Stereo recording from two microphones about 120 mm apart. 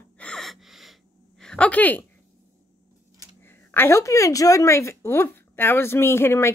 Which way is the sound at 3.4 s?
20° left (ahead or behind).